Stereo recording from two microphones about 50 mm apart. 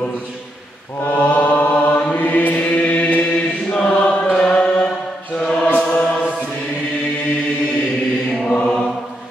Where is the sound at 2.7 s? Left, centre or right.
Left.